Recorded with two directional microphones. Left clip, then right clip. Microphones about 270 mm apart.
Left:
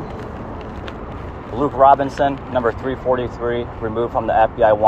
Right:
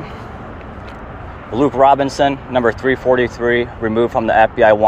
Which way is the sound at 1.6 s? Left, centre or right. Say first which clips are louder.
Right 1 dB; right.